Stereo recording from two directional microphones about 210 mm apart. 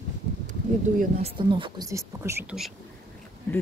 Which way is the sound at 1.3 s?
25° right (ahead or behind).